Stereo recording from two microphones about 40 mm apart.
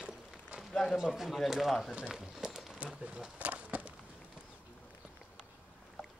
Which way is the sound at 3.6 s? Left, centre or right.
Right.